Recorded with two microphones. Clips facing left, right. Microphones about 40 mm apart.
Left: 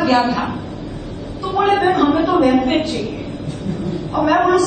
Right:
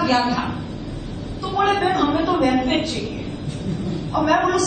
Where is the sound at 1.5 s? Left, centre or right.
Left.